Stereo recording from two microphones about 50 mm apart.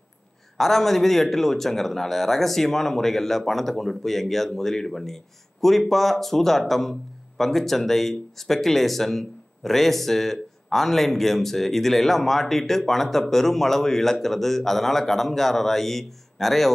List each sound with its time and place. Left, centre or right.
0.6 s speech: centre